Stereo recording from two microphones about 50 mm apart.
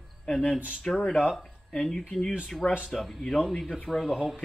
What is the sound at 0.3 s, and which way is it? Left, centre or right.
Speech, centre.